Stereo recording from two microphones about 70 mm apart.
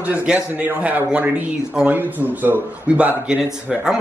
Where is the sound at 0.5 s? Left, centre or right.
Right.